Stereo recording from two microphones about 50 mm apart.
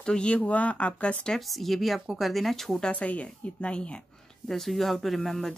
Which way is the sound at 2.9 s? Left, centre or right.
Left.